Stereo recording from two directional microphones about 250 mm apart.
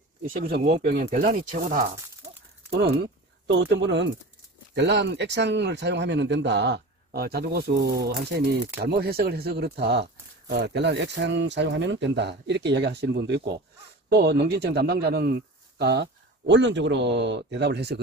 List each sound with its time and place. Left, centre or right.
0.5 s a man's voice: right
3.5 s a man's voice: right